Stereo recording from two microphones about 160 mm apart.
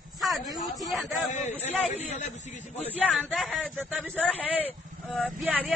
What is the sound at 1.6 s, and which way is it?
Speech, 45° left (ahead or behind).